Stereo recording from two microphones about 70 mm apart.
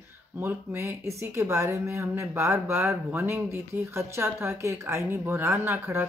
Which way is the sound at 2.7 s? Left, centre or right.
Right.